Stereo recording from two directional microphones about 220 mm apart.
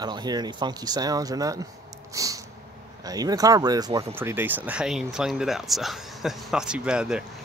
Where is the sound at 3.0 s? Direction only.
15° right (ahead or behind).